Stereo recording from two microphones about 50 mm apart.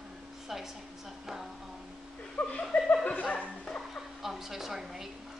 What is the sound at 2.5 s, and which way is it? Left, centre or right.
Speech, left.